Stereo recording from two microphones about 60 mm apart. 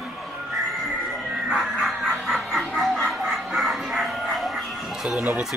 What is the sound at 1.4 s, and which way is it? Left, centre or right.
Chicken, centre.